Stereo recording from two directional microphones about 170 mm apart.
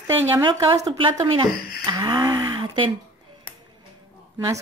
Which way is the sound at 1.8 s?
25° right (ahead or behind).